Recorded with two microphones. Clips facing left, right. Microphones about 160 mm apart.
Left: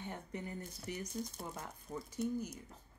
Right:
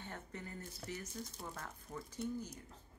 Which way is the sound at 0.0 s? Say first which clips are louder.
Left 4 dB; 15° left (ahead or behind).